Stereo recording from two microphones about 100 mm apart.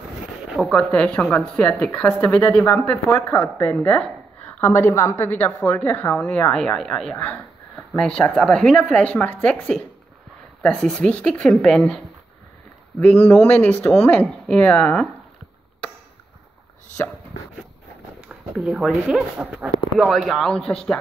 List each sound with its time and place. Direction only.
0.7 s a woman's voice: 10° left (ahead or behind)
3.7 s speech: 10° left (ahead or behind)
4.6 s a woman's voice: 20° left (ahead or behind); by 7.2 s 5° left (ahead or behind)
8.2 s speech: 5° left (ahead or behind)
13.0 s speech: 15° left (ahead or behind)
18.6 s speech: centre (ahead or behind)
19.0 s speech: 10° right (ahead or behind); by 21.0 s 5° left (ahead or behind)